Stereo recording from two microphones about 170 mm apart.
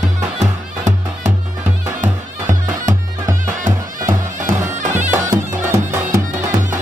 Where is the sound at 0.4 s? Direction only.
45° right (ahead or behind).